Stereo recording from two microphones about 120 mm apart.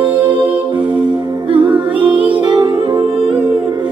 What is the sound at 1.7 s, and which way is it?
Music, 15° right (ahead or behind).